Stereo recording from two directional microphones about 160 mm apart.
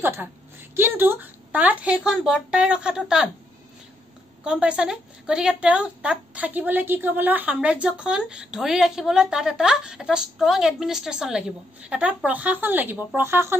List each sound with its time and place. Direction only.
0.0 s a woman's voice: 15° right (ahead or behind)
4.5 s a woman's voice: 5° right (ahead or behind)